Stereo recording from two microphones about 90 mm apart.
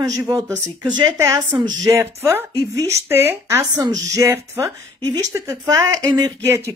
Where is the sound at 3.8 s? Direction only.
45° right (ahead or behind).